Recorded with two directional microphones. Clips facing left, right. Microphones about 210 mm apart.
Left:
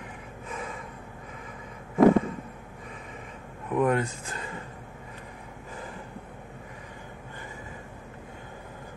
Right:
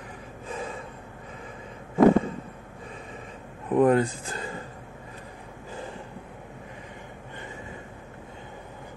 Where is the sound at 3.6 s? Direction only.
30° right (ahead or behind).